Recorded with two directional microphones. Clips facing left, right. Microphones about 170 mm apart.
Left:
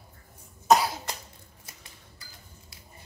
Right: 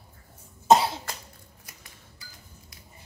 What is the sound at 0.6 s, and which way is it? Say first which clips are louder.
Cough: right 2 dB; 25° right (ahead or behind).